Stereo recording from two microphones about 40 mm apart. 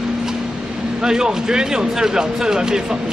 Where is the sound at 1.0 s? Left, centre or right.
Centre.